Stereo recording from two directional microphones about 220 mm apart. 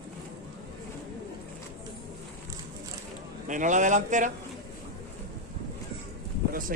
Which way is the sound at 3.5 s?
35° right (ahead or behind).